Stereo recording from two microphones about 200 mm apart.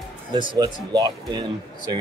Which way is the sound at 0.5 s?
20° right (ahead or behind).